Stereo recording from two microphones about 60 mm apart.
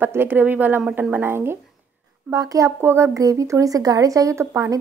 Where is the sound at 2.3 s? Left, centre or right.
Right.